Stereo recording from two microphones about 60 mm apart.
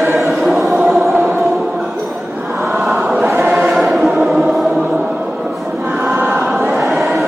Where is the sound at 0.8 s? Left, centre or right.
Centre.